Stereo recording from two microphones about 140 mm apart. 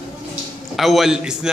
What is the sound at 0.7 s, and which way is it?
Speech, centre (ahead or behind).